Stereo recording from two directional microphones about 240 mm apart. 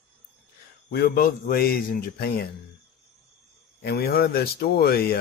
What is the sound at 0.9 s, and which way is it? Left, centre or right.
Speech, left.